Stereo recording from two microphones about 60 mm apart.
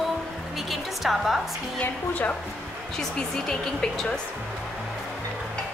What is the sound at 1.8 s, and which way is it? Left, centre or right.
Speech, left.